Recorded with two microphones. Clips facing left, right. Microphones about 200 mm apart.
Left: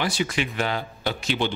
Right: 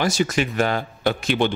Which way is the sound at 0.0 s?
45° right (ahead or behind).